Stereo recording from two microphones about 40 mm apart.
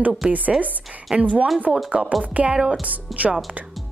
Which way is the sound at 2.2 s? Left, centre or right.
Right.